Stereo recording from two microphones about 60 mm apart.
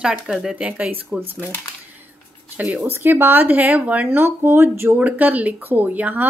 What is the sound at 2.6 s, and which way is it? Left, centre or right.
Speech, right.